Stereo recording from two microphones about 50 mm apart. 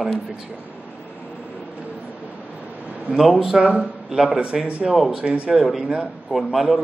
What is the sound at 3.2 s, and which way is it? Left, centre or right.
Speech, centre.